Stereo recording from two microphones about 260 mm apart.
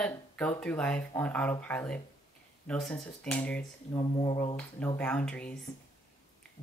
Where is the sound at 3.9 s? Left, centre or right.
Centre.